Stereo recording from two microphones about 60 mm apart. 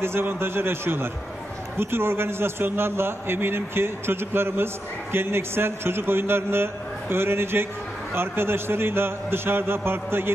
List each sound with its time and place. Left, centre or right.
0.0 s a man's voice: right